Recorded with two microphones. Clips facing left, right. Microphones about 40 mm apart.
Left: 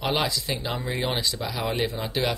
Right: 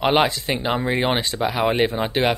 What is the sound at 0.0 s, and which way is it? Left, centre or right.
Speech, right.